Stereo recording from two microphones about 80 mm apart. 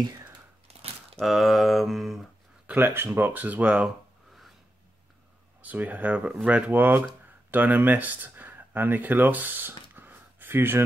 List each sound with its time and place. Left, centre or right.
1.2 s a sound: centre
2.6 s speech: right
5.6 s speech: right